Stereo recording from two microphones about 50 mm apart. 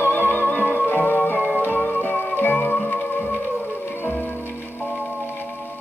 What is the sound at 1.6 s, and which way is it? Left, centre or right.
Music, left.